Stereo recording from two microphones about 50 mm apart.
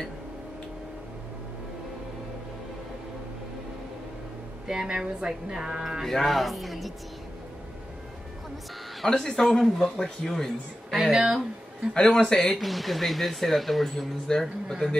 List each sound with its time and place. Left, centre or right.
4.6 s speech: centre
6.0 s speech: centre
9.0 s speech: centre
11.9 s speech: centre
12.5 s speech: centre